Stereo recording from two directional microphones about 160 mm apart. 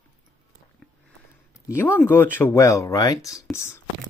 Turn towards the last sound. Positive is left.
turn(degrees=15)  # may be behind; listen again after turning